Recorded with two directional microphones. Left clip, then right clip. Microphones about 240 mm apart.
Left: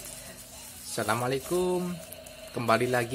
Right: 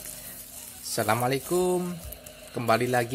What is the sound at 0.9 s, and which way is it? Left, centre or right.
A man's voice, centre.